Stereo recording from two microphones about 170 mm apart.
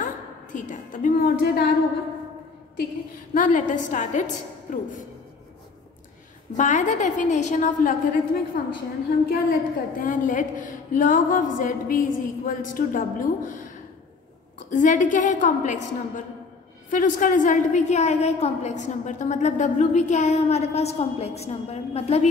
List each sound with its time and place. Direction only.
0.0 s a woman's voice: 50° left (ahead or behind); by 1.7 s 65° left (ahead or behind)
3.3 s a woman's voice: 50° left (ahead or behind)
6.5 s a woman's voice: 45° left (ahead or behind)
8.5 s a woman's voice: 65° left (ahead or behind)
14.7 s a woman's voice: 50° left (ahead or behind)
16.9 s a woman's voice: 50° left (ahead or behind)